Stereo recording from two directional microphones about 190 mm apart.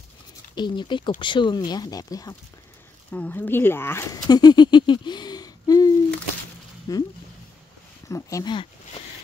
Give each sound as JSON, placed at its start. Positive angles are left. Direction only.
{"t": 0.6, "sound": "speech", "side_deg": 25}
{"t": 3.1, "sound": "speech", "side_deg": 5}
{"t": 6.9, "sound": "speech", "side_deg": 20}
{"t": 8.1, "sound": "speech", "side_deg": 15}